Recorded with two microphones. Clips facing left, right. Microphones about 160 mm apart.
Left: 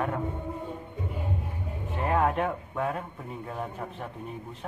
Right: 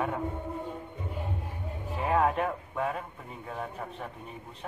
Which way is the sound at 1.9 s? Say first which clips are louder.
Even; centre (ahead or behind).